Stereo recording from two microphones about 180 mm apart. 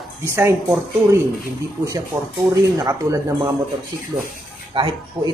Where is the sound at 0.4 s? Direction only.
15° right (ahead or behind).